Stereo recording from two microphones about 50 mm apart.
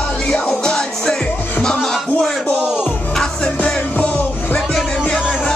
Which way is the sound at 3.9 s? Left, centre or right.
Left.